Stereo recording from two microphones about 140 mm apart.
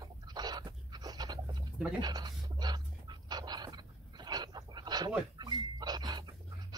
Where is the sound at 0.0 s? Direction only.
30° right (ahead or behind).